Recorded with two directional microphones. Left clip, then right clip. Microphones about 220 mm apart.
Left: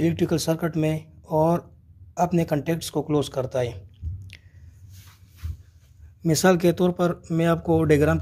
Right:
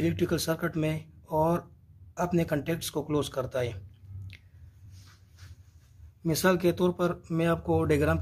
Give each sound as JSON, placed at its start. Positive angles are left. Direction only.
{"t": 0.0, "sound": "speech", "side_deg": 15}
{"t": 4.3, "sound": "squish", "side_deg": 20}
{"t": 6.2, "sound": "speech", "side_deg": 20}